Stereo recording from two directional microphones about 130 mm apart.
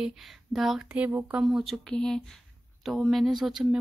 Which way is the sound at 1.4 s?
Centre (ahead or behind).